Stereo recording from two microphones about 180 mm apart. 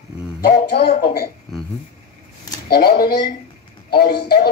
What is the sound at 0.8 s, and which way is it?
Speech, 35° left (ahead or behind).